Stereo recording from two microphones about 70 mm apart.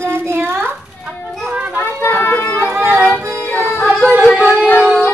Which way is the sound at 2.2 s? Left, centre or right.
Left.